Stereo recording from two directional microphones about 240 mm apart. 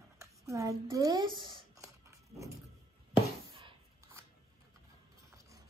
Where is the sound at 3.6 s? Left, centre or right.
Centre.